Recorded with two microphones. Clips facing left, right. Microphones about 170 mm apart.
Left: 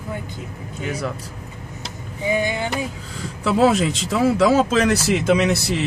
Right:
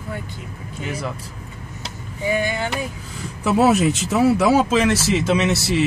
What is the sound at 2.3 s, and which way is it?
Speech, 15° left (ahead or behind).